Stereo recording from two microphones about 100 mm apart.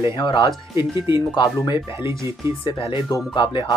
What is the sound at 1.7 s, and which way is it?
Speech, 25° right (ahead or behind).